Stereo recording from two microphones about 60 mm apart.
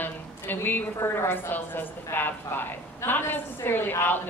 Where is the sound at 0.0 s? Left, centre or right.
Left.